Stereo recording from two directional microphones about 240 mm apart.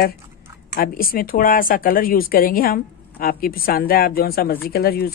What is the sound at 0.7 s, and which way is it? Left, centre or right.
Speech, left.